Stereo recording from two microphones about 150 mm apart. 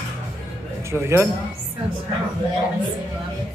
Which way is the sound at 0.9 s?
15° right (ahead or behind).